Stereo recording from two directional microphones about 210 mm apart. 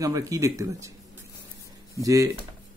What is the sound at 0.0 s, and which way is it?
Speech, 15° right (ahead or behind).